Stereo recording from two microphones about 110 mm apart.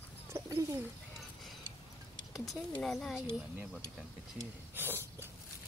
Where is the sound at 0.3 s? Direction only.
25° right (ahead or behind).